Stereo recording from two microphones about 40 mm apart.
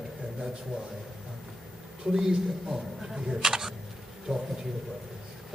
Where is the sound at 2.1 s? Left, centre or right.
Centre.